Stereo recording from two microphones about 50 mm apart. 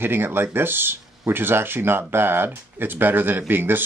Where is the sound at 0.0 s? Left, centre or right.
Right.